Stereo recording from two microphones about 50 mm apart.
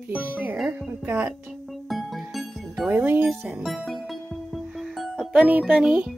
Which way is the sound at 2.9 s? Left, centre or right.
Right.